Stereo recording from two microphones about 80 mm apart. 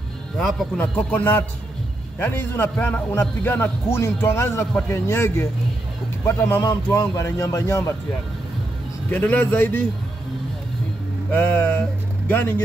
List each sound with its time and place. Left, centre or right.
0.4 s speech: centre
0.7 s a man's voice: left
9.1 s a man's voice: left
11.3 s a man's voice: left